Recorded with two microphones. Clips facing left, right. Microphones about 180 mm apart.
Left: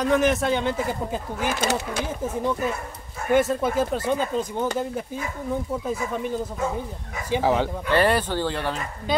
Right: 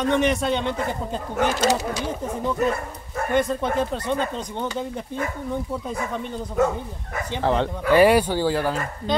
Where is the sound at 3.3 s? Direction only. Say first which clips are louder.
Left 2 dB; 5° left (ahead or behind).